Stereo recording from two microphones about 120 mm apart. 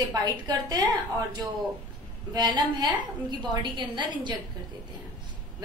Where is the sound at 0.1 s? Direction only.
35° right (ahead or behind).